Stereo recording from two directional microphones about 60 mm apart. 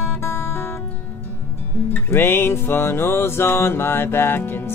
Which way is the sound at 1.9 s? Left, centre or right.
Left.